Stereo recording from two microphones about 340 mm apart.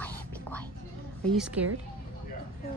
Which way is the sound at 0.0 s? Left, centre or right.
Centre.